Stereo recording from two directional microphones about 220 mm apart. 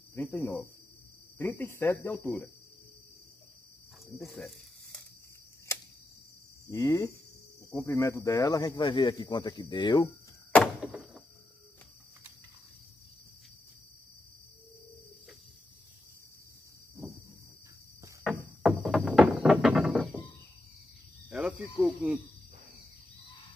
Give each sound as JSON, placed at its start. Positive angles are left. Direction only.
{"t": 0.1, "sound": "cricket", "side_deg": 10}
{"t": 1.4, "sound": "speech", "side_deg": 10}
{"t": 4.1, "sound": "snake", "side_deg": 0}
{"t": 6.7, "sound": "speech", "side_deg": 15}
{"t": 10.5, "sound": "door", "side_deg": -5}
{"t": 18.6, "sound": "music", "side_deg": -5}
{"t": 21.3, "sound": "cricket", "side_deg": -5}